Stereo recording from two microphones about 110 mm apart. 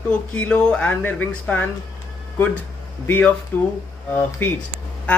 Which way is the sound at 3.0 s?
20° left (ahead or behind).